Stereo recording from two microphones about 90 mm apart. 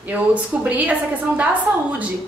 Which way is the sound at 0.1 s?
15° right (ahead or behind).